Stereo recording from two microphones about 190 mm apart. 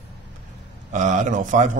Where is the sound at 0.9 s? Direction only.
40° right (ahead or behind).